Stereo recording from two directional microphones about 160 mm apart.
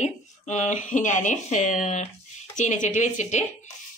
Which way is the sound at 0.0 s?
45° left (ahead or behind).